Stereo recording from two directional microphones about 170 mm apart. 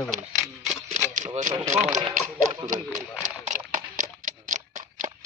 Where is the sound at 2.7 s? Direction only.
50° right (ahead or behind).